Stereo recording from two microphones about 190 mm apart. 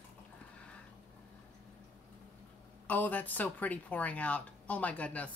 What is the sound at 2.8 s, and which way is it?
Speech, 10° left (ahead or behind).